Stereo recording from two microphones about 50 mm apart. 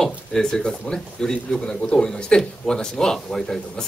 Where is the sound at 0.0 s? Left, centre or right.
Centre.